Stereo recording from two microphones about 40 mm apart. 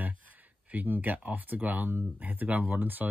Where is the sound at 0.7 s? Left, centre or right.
Right.